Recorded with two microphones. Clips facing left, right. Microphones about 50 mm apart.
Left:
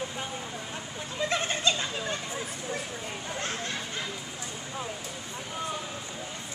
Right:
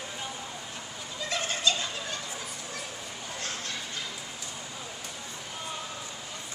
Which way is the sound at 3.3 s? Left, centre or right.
Left.